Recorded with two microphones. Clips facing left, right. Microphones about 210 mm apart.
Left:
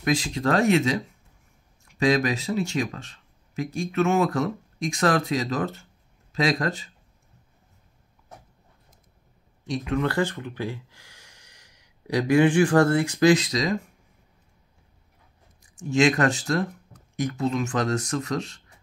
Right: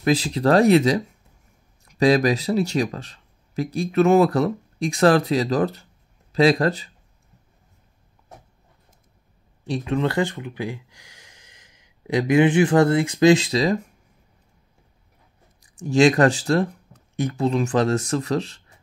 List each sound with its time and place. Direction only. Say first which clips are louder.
0.0 s speech: right 4 dB; 35° right (ahead or behind)
9.7 s speech: right 3 dB; 25° right (ahead or behind)
15.8 s speech: right 5 dB; 35° right (ahead or behind)